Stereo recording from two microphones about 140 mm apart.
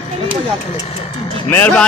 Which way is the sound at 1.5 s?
10° left (ahead or behind).